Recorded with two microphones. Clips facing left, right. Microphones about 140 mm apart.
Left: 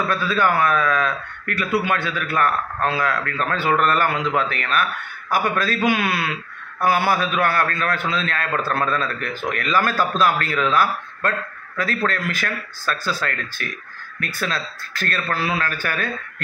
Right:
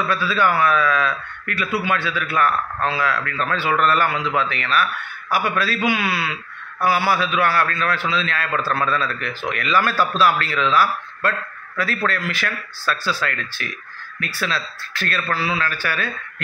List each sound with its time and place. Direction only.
0.1 s a man's voice: 45° left (ahead or behind)